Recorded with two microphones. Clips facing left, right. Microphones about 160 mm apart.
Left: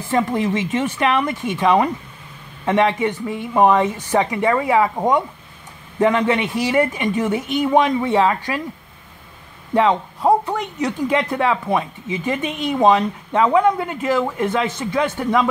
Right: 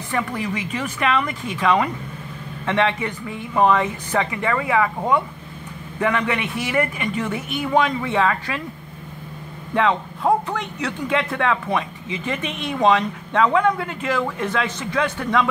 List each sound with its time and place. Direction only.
0.1 s speech: 25° left (ahead or behind)
9.8 s speech: 15° left (ahead or behind)